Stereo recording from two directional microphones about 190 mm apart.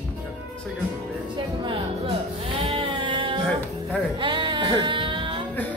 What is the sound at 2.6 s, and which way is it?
Sheep, 30° right (ahead or behind).